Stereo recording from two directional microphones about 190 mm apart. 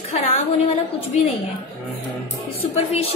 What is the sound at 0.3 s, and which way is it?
A woman's voice, 30° left (ahead or behind).